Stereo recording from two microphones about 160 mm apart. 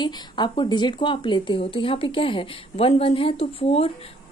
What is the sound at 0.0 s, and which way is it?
Speech, 30° left (ahead or behind).